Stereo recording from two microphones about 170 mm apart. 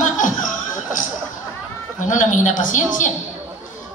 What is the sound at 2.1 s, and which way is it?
A woman's voice, 50° left (ahead or behind).